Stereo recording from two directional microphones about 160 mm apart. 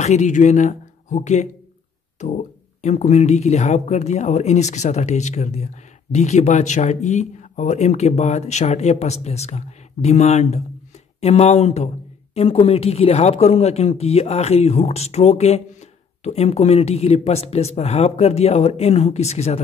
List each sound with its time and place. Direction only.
0.0 s speech: 45° left (ahead or behind)